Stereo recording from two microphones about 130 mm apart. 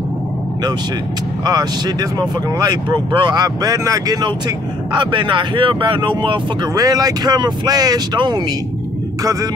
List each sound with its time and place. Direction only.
1.4 s speech: 30° right (ahead or behind)
4.9 s speech: 40° right (ahead or behind)